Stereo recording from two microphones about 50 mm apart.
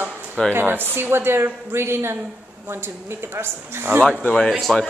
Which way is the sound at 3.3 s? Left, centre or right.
Right.